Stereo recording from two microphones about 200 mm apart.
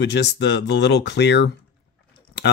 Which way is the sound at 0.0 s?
60° left (ahead or behind).